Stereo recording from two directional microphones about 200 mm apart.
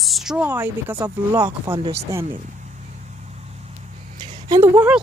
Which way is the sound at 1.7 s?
5° right (ahead or behind).